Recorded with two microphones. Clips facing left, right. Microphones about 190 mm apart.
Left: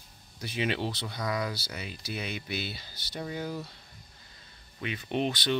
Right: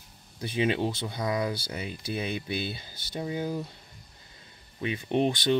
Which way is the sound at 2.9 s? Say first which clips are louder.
Right 4 dB; 50° right (ahead or behind).